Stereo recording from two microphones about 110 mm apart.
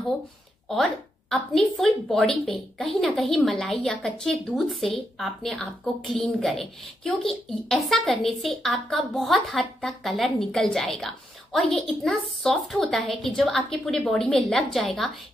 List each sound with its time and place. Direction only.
0.7 s a woman's voice: centre (ahead or behind)